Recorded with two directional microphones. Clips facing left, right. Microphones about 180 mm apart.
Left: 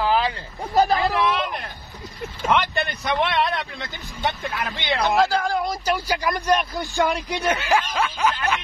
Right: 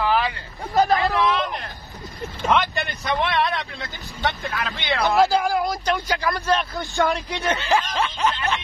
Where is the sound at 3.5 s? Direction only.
20° left (ahead or behind).